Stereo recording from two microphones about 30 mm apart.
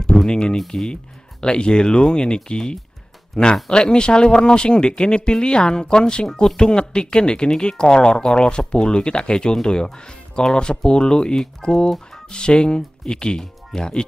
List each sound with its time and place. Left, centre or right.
0.3 s speech: left